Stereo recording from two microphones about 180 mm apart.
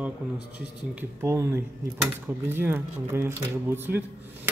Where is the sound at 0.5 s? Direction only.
10° right (ahead or behind).